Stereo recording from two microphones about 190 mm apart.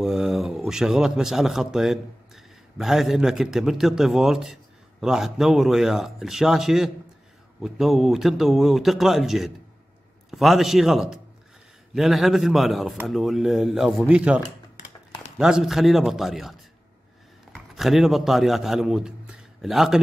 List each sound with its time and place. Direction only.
0.0 s a man's voice: centre (ahead or behind)